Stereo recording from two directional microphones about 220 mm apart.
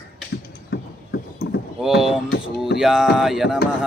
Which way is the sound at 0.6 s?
50° left (ahead or behind).